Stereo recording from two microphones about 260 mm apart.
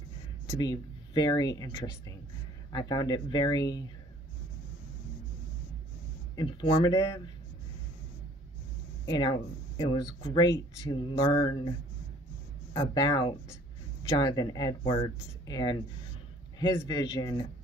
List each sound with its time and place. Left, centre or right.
0.5 s speech: centre
6.3 s speech: centre
9.0 s speech: centre
12.7 s speech: centre